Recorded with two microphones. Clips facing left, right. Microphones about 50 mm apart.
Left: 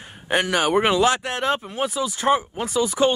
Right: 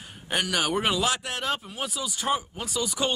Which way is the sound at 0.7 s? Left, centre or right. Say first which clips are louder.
Left 7 dB; left.